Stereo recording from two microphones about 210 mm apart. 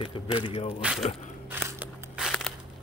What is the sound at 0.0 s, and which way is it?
Speech, 25° left (ahead or behind).